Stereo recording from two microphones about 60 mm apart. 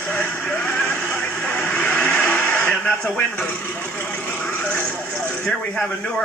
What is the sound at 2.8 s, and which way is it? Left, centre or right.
Speech, left.